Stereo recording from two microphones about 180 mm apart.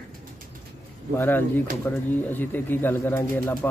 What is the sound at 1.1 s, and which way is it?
Speech, 10° left (ahead or behind).